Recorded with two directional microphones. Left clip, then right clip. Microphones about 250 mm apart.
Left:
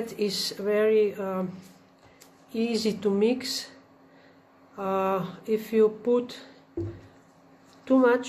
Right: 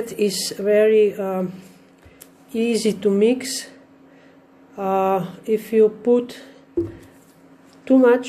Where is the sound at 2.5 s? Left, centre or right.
Centre.